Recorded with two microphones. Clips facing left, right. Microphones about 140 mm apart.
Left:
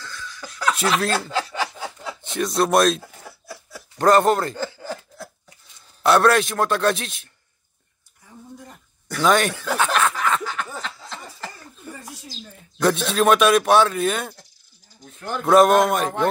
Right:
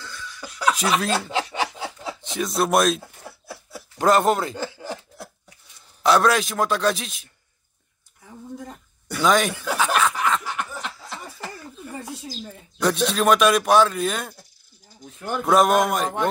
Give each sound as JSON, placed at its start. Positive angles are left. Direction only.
{"t": 0.0, "sound": "laughter", "side_deg": -10}
{"t": 0.8, "sound": "speech", "side_deg": -10}
{"t": 1.3, "sound": "a sound", "side_deg": -20}
{"t": 2.2, "sound": "speech", "side_deg": 0}
{"t": 4.6, "sound": "a sound", "side_deg": -20}
{"t": 6.0, "sound": "speech", "side_deg": 0}
{"t": 9.1, "sound": "snicker", "side_deg": 0}
{"t": 12.7, "sound": "speech", "side_deg": 0}